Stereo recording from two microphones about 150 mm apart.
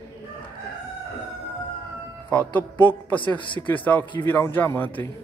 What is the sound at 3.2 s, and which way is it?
Speech, 35° left (ahead or behind).